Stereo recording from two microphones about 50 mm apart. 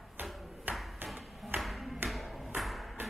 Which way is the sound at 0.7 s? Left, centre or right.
Right.